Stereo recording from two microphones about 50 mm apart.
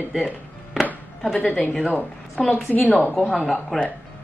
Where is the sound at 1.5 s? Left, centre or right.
Centre.